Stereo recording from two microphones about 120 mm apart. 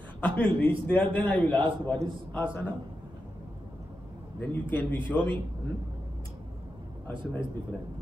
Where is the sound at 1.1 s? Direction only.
10° left (ahead or behind).